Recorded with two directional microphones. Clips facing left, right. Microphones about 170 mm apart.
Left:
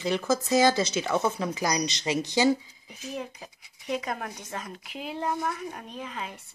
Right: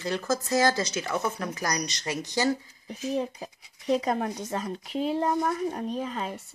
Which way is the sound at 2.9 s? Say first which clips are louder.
Right 7 dB; 35° right (ahead or behind).